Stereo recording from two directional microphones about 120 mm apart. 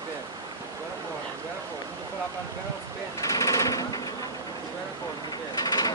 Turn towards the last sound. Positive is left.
turn(degrees=35)  # may be behind; listen again after turning